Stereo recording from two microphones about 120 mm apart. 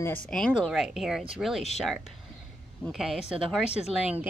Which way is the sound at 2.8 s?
5° right (ahead or behind).